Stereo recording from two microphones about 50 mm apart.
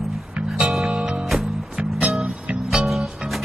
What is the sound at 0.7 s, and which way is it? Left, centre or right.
Music, centre.